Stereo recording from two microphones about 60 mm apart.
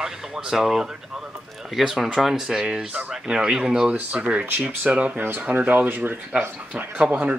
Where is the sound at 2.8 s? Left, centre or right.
Right.